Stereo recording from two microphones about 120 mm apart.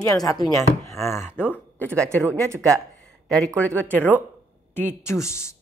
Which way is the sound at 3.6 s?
10° left (ahead or behind).